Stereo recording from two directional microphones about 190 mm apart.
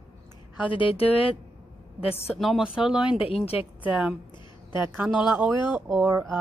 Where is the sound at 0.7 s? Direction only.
30° left (ahead or behind).